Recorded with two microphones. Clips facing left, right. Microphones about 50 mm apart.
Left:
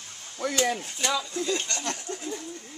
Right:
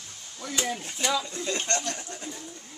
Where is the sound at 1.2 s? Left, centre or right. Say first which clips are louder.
Left 3 dB; right.